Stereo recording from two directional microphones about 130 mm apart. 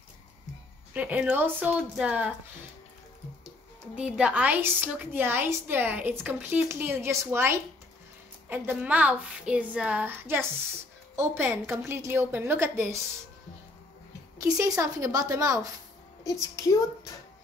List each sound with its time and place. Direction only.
0.9 s a woman's voice: 10° right (ahead or behind)
3.9 s a woman's voice: 10° right (ahead or behind)
14.4 s a woman's voice: 25° right (ahead or behind)
16.3 s a woman's voice: 25° left (ahead or behind)